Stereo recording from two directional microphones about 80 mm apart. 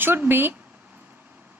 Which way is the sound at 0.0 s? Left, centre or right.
Right.